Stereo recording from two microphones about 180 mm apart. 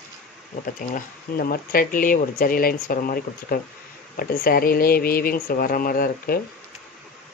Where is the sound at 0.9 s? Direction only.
55° left (ahead or behind).